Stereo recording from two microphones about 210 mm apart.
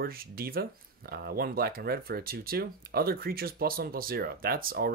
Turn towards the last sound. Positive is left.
turn(degrees=-45)  # may be behind; listen again after turning